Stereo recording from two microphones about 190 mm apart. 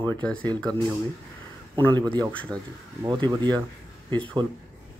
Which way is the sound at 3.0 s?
20° right (ahead or behind).